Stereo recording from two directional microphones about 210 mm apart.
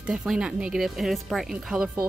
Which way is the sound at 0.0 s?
5° right (ahead or behind).